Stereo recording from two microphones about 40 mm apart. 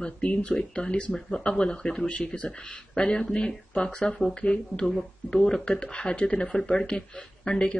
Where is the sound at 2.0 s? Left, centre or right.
Left.